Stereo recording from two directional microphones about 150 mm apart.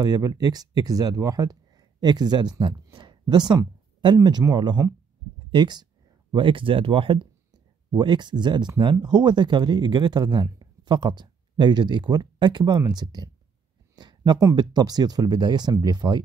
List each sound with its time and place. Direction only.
0.0 s speech: 25° right (ahead or behind)